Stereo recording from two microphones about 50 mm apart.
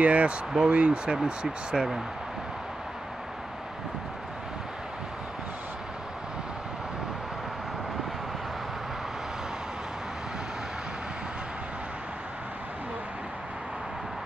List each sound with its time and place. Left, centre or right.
0.0 s speech: right